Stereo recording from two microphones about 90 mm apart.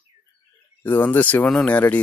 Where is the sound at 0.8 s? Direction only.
20° left (ahead or behind).